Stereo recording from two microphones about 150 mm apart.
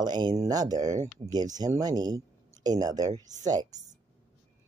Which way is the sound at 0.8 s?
55° right (ahead or behind).